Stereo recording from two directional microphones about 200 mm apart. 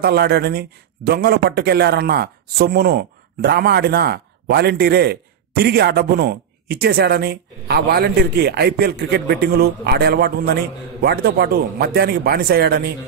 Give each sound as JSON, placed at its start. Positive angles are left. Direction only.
{"t": 0.0, "sound": "a man's voice", "side_deg": -55}